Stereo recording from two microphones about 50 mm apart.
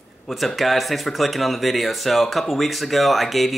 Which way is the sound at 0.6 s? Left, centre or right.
Centre.